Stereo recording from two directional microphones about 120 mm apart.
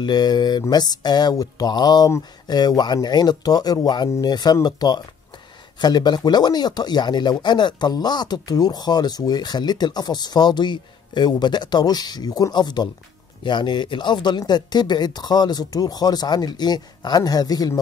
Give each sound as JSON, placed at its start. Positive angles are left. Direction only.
{"t": 0.0, "sound": "speech", "side_deg": 35}